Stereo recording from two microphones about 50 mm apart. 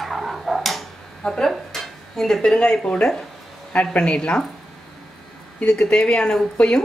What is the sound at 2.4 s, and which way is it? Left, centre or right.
Speech, centre.